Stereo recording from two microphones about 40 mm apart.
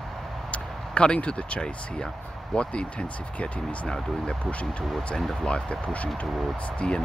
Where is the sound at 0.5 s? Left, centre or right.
Left.